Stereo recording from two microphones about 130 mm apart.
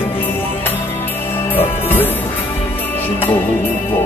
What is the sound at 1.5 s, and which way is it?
Music, 15° left (ahead or behind).